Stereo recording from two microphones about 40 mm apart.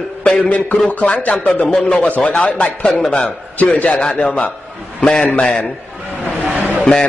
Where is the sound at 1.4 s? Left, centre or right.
Left.